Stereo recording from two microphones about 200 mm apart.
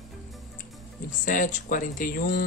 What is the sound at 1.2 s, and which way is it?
Speech, 40° left (ahead or behind).